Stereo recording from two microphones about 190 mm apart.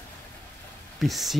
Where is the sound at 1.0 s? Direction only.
Centre (ahead or behind).